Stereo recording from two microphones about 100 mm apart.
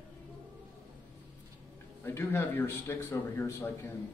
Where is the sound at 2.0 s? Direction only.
25° left (ahead or behind).